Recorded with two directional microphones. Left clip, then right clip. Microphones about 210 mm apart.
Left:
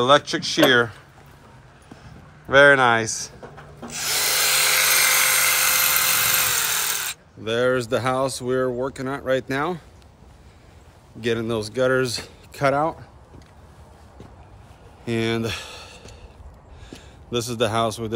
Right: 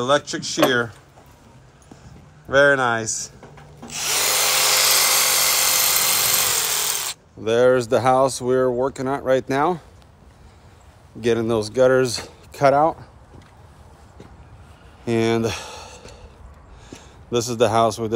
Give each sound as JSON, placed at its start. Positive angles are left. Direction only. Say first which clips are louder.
{"t": 0.0, "sound": "speech", "louder": "left 3 dB", "side_deg": -15}
{"t": 2.4, "sound": "speech", "louder": "left 2 dB", "side_deg": -15}
{"t": 3.8, "sound": "rub", "louder": "right 2 dB", "side_deg": 0}
{"t": 4.4, "sound": "dental drill", "louder": "even", "side_deg": -55}
{"t": 7.4, "sound": "speech", "louder": "right 5 dB", "side_deg": -10}
{"t": 11.1, "sound": "speech", "louder": "right 4 dB", "side_deg": -5}
{"t": 15.0, "sound": "a sound", "louder": "right 4 dB", "side_deg": -5}
{"t": 16.9, "sound": "a man's voice", "louder": "right 4 dB", "side_deg": -5}